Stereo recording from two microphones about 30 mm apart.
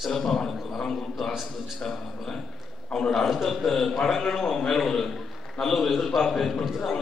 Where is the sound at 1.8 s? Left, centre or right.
Centre.